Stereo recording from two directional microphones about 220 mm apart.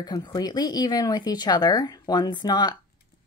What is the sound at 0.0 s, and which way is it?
A woman's voice, 20° left (ahead or behind).